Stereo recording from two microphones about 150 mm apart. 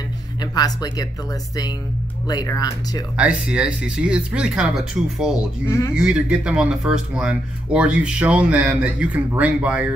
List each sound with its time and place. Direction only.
0.4 s speech: 25° left (ahead or behind)
2.2 s speech: 25° left (ahead or behind)
3.2 s speech: 5° right (ahead or behind)
5.7 s speech: 20° left (ahead or behind)
5.9 s speech: 5° right (ahead or behind)